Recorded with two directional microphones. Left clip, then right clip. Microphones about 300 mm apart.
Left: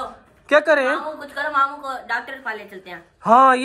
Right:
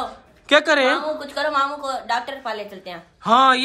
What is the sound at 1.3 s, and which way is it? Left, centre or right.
Speech, centre.